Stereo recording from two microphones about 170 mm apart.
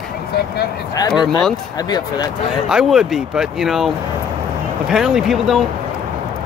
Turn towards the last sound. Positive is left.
turn(degrees=0)  # may be behind; listen again after turning